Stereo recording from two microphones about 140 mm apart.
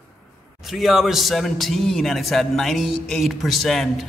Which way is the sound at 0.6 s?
Centre (ahead or behind).